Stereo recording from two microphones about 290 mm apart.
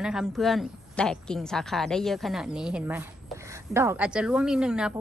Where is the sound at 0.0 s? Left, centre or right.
Centre.